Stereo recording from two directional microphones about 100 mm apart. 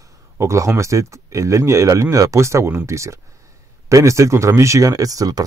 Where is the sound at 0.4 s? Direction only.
30° right (ahead or behind).